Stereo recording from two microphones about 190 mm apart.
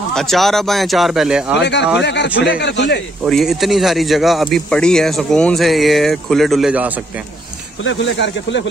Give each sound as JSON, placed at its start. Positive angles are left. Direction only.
{"t": 0.1, "sound": "a man's voice", "side_deg": 0}
{"t": 1.6, "sound": "speech", "side_deg": 65}
{"t": 3.3, "sound": "a man's voice", "side_deg": 0}
{"t": 7.8, "sound": "speech", "side_deg": 75}